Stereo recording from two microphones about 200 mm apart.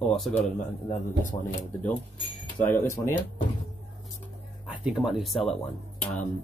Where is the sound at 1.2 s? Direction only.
40° left (ahead or behind).